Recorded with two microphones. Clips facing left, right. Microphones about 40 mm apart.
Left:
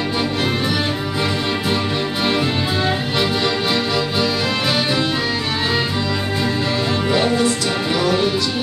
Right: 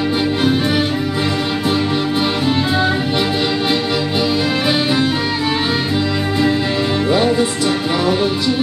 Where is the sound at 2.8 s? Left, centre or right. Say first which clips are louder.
Right 3 dB; centre.